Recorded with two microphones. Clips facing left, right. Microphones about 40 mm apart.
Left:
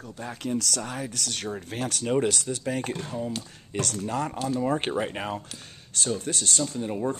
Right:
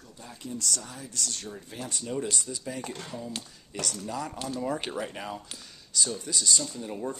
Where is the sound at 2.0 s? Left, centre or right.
Left.